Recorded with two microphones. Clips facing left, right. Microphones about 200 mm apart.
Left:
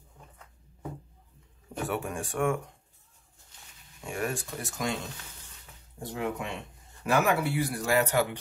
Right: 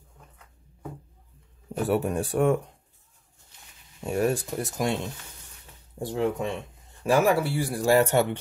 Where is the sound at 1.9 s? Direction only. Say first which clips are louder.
Right 9 dB; 35° right (ahead or behind).